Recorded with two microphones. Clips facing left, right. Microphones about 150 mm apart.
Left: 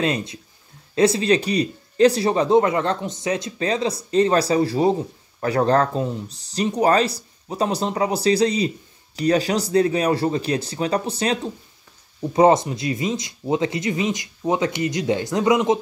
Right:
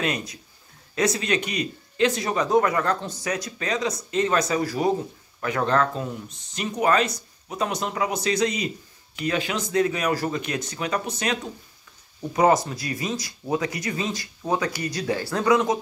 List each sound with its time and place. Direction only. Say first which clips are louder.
0.0 s speech: left 5 dB; 30° left (ahead or behind)